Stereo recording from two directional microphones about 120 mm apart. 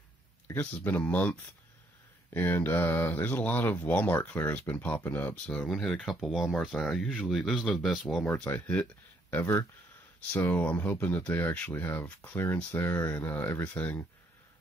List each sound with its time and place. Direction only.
0.5 s speech: 15° left (ahead or behind)